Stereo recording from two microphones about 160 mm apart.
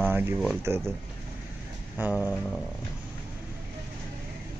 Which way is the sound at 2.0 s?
10° right (ahead or behind).